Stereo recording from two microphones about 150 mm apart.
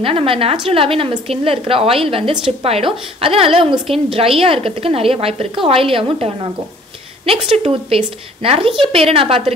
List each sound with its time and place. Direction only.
0.0 s a woman's voice: 40° right (ahead or behind)